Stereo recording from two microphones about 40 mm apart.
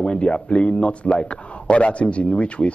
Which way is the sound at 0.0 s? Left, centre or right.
Left.